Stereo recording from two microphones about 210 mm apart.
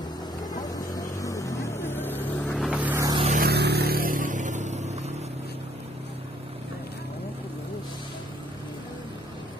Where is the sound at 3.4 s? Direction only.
50° right (ahead or behind); by 5.1 s 35° right (ahead or behind).